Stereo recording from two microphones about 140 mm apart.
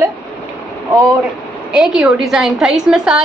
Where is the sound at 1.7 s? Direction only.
5° right (ahead or behind).